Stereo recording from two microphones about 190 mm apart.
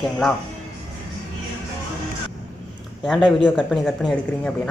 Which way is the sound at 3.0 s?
Centre (ahead or behind).